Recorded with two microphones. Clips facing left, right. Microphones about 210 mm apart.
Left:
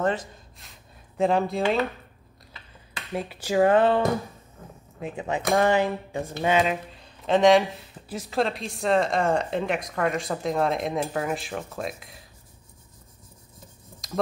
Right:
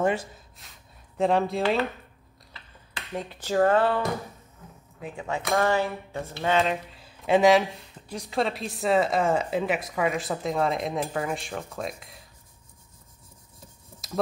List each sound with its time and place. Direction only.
0.0 s speech: 10° right (ahead or behind)
3.1 s speech: 10° left (ahead or behind)
5.0 s speech: 20° left (ahead or behind); by 12.3 s centre (ahead or behind)
14.0 s stir: 5° right (ahead or behind)